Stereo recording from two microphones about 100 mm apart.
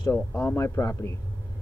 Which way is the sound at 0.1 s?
20° left (ahead or behind).